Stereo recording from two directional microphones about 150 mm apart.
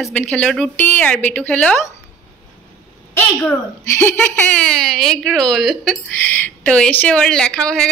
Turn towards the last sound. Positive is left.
turn(degrees=5)  # may be behind; listen again after turning